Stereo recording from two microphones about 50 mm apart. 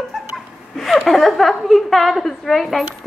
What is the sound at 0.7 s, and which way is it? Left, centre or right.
A woman's voice, centre.